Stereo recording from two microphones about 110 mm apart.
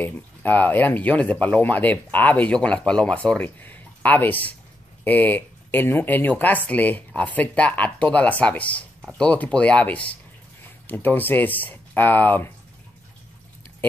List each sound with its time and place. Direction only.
0.0 s speech: 15° left (ahead or behind)